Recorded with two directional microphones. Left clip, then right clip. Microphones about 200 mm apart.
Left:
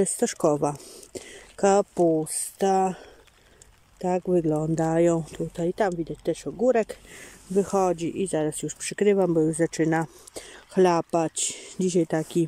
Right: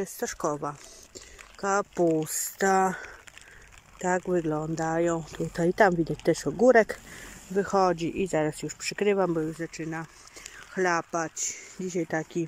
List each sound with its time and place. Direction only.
0.0 s speech: 30° left (ahead or behind)
1.8 s speech: 10° left (ahead or behind)
5.5 s speech: centre (ahead or behind)
7.5 s speech: 15° left (ahead or behind)
9.6 s speech: 35° left (ahead or behind)
11.3 s speech: 50° left (ahead or behind)
11.9 s speech: 25° left (ahead or behind)